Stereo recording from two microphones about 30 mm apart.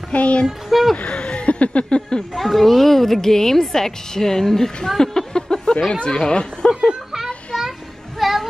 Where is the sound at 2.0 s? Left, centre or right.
Left.